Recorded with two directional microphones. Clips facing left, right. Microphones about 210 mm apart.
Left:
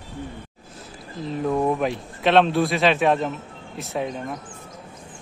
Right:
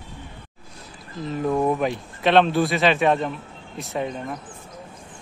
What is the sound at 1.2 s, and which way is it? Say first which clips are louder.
Speech: even; centre (ahead or behind).